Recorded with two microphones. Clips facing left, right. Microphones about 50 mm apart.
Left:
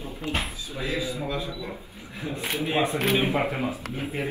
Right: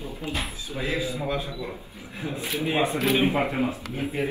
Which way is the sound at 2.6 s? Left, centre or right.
Centre.